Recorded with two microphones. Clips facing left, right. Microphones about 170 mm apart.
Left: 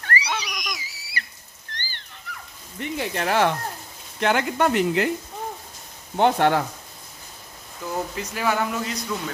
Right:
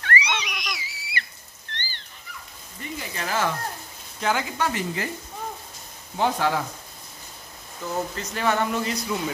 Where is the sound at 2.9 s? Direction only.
65° left (ahead or behind).